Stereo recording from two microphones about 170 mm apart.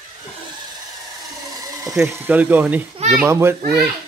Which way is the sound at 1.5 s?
20° right (ahead or behind).